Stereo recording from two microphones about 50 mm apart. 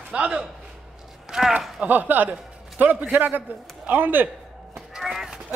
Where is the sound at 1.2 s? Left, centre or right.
Centre.